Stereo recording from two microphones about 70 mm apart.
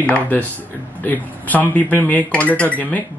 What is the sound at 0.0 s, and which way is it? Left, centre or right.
Speech, left.